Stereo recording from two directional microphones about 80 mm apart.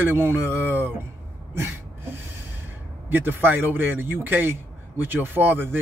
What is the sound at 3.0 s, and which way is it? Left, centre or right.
Speech, right.